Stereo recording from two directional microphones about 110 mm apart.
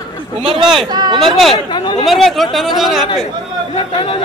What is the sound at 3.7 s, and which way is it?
Speech, 50° left (ahead or behind).